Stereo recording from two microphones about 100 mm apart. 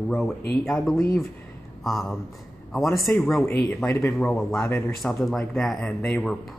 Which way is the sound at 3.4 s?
20° left (ahead or behind).